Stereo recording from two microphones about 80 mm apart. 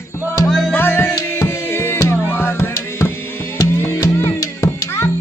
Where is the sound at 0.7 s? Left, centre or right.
Left.